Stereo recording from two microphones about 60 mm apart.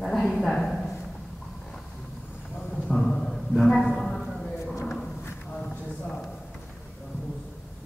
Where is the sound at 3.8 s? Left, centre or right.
Centre.